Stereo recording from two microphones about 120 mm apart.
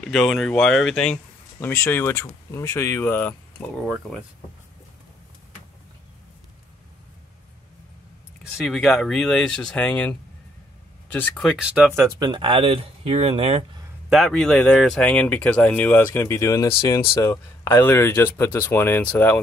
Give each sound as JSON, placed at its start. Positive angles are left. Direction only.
{"t": 0.0, "sound": "speech", "side_deg": 0}
{"t": 3.8, "sound": "speech", "side_deg": 0}
{"t": 8.5, "sound": "speech", "side_deg": 0}
{"t": 11.5, "sound": "speech", "side_deg": -5}
{"t": 12.2, "sound": "speech", "side_deg": -40}
{"t": 14.0, "sound": "speech", "side_deg": 0}